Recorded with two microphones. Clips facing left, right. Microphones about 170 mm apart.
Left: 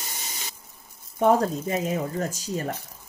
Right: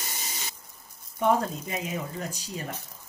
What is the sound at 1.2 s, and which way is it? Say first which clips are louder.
Speech: left 4 dB; 40° left (ahead or behind).